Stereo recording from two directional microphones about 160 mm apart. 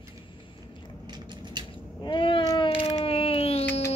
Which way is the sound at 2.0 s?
30° left (ahead or behind).